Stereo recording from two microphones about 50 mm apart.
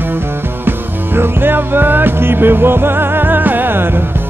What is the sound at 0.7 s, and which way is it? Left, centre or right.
Music, right.